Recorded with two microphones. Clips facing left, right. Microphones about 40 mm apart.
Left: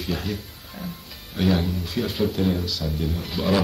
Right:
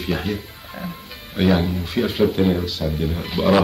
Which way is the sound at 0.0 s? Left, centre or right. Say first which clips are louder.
Right 4 dB; right.